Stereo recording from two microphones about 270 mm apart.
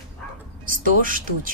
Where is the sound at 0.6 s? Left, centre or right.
Right.